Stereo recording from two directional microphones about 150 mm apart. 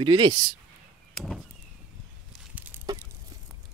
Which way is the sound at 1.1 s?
Centre (ahead or behind).